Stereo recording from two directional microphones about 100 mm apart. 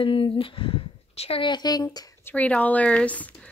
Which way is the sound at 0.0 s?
65° left (ahead or behind).